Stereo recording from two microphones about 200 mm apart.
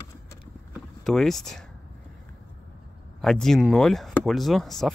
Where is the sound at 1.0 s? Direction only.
Centre (ahead or behind).